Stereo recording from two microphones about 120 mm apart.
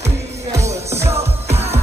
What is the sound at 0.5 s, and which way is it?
Music, 25° right (ahead or behind).